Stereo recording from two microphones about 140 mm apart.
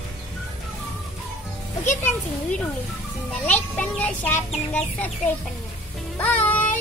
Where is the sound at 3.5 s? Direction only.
10° left (ahead or behind).